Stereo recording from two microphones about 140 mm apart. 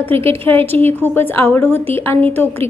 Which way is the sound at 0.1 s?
40° right (ahead or behind).